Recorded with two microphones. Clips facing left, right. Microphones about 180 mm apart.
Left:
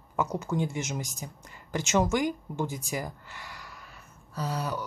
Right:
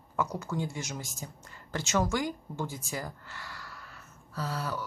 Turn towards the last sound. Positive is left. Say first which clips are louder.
# left 3 dB
turn(degrees=15)  # may be behind; listen again after turning